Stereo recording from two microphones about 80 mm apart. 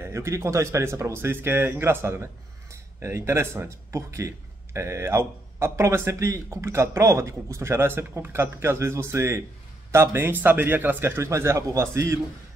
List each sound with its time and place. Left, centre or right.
0.0 s speech: right